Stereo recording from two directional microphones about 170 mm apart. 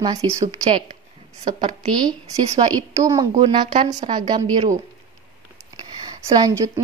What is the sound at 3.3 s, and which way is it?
A woman's voice, 35° right (ahead or behind).